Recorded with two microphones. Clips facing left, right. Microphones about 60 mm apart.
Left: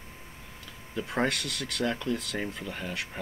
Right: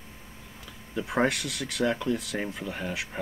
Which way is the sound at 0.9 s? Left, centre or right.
Centre.